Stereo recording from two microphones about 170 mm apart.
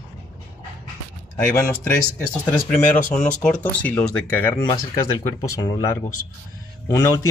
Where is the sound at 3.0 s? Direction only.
50° left (ahead or behind).